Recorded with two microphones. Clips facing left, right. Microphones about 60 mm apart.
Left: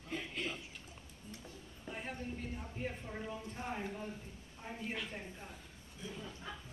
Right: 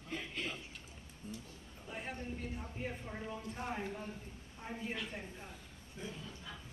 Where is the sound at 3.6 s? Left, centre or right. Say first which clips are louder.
Right 1 dB; centre.